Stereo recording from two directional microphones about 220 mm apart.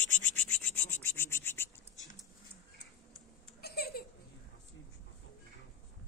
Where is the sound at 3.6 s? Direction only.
45° left (ahead or behind).